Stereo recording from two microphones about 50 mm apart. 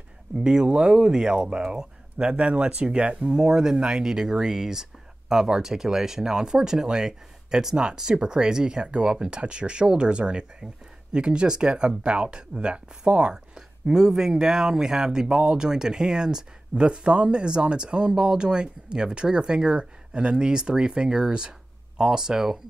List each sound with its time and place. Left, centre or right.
0.4 s speech: centre